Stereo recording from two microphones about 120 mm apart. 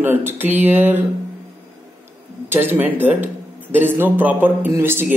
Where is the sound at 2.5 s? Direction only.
15° right (ahead or behind).